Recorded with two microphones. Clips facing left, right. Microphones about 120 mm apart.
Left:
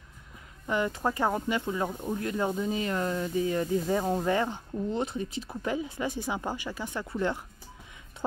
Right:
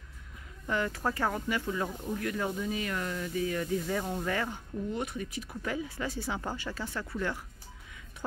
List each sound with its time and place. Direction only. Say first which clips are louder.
0.7 s speech: left 3 dB; 20° left (ahead or behind)